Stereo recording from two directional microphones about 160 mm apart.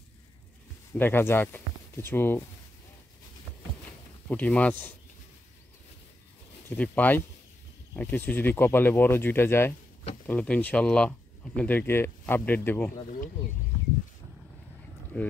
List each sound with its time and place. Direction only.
0.9 s speech: 10° left (ahead or behind)
4.3 s speech: 10° left (ahead or behind)
6.7 s speech: 10° left (ahead or behind)
12.9 s speech: 60° left (ahead or behind)
15.1 s speech: 10° left (ahead or behind)